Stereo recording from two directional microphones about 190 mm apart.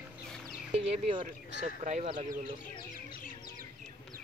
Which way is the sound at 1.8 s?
40° right (ahead or behind).